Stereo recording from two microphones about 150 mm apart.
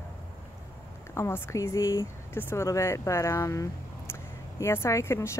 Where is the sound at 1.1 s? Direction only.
15° left (ahead or behind).